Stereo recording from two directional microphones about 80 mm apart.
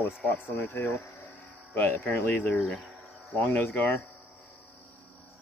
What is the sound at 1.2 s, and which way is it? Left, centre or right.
Hum, left.